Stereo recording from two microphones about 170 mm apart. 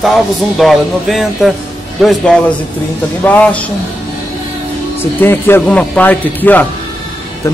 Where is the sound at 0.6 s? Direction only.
Centre (ahead or behind).